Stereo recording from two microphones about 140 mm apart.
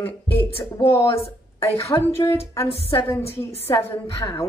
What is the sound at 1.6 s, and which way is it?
Speech, 20° left (ahead or behind).